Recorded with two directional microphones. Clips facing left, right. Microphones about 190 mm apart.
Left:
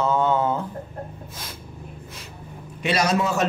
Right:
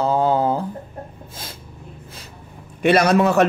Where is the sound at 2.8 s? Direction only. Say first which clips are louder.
Right 7 dB; 55° right (ahead or behind).